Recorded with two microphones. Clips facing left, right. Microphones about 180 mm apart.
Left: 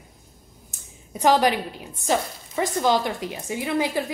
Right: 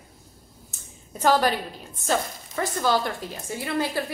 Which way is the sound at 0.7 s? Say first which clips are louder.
Left 4 dB; 15° left (ahead or behind).